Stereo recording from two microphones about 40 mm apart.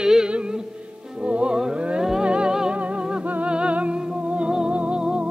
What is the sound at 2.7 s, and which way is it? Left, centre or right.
Music, right.